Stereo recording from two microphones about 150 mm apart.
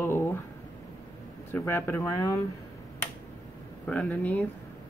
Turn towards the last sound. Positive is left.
turn(degrees=10)  # may be behind; listen again after turning